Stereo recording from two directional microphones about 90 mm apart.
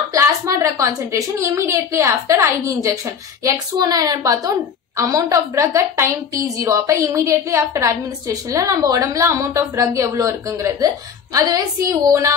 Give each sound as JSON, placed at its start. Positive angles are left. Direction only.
{"t": 0.1, "sound": "a woman's voice", "side_deg": -35}
{"t": 3.4, "sound": "a woman's voice", "side_deg": -45}